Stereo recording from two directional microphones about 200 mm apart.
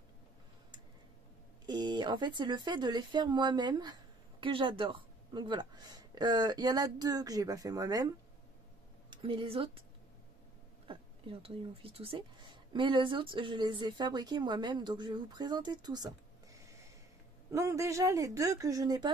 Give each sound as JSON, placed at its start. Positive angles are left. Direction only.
{"t": 1.7, "sound": "speech", "side_deg": -20}
{"t": 9.1, "sound": "a woman's voice", "side_deg": -25}
{"t": 10.9, "sound": "a woman's voice", "side_deg": -25}
{"t": 17.5, "sound": "speech", "side_deg": -15}